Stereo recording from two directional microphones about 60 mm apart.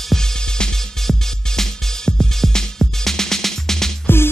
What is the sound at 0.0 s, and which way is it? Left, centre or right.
Music, centre.